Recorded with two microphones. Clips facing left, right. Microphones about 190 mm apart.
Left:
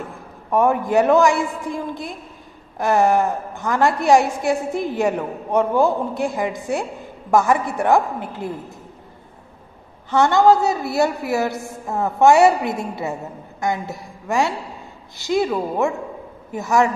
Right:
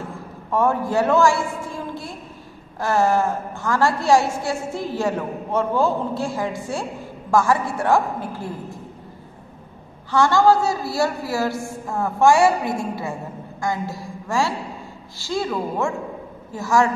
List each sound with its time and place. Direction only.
0.5 s a woman's voice: 15° left (ahead or behind)
10.1 s a woman's voice: 20° left (ahead or behind)